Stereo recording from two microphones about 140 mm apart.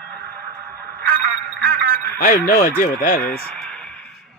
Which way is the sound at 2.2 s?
90° left.